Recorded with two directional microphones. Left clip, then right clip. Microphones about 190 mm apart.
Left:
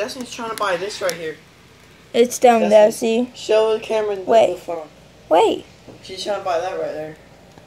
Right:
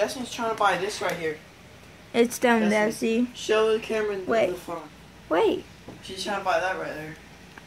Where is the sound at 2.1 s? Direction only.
Centre (ahead or behind).